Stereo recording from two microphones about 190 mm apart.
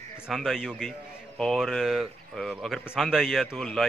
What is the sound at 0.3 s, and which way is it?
Speech, centre (ahead or behind).